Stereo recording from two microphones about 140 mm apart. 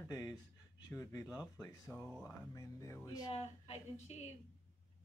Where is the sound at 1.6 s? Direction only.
10° left (ahead or behind).